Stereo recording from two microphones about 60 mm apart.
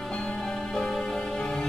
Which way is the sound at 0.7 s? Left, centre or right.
Centre.